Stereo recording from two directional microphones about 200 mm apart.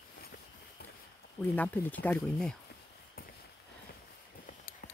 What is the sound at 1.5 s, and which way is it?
Speech, 10° left (ahead or behind).